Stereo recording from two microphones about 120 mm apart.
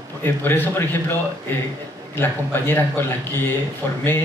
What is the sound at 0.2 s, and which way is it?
Speech, 15° left (ahead or behind).